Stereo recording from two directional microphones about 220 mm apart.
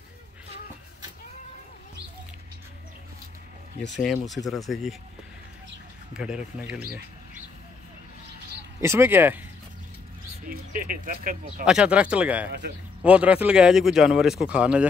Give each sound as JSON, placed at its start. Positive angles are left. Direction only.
{"t": 4.0, "sound": "speech", "side_deg": 0}
{"t": 6.1, "sound": "speech", "side_deg": -5}
{"t": 8.8, "sound": "speech", "side_deg": -10}
{"t": 10.4, "sound": "speech", "side_deg": -40}
{"t": 11.6, "sound": "speech", "side_deg": -5}